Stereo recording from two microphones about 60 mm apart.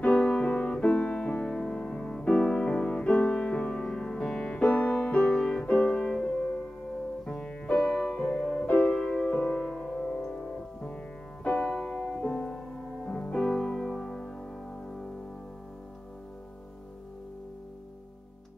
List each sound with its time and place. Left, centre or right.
0.0 s music: left
8.6 s music: left
8.9 s music: centre
9.3 s music: left
9.6 s music: centre